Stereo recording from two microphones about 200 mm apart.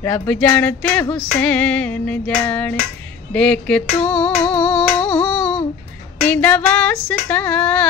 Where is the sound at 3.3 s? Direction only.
5° left (ahead or behind).